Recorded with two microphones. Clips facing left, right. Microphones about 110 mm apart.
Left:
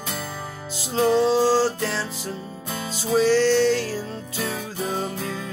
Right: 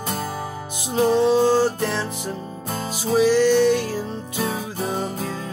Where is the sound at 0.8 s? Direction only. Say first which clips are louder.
Right 1 dB; 15° right (ahead or behind).